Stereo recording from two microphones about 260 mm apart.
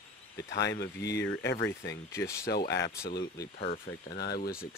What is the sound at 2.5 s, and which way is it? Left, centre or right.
Speech, left.